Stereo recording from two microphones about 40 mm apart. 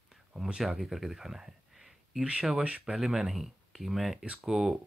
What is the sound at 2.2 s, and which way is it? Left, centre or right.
Speech, right.